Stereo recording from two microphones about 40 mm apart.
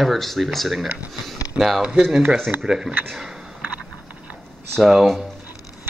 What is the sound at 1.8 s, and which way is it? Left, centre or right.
Speech, centre.